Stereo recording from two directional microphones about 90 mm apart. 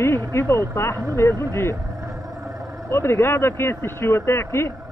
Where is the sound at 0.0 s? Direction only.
30° left (ahead or behind).